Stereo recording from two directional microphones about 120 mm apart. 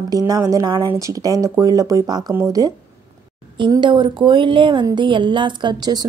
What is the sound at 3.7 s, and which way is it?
Speech, 40° right (ahead or behind).